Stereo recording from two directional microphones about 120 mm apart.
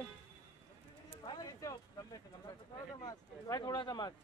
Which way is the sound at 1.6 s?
30° left (ahead or behind).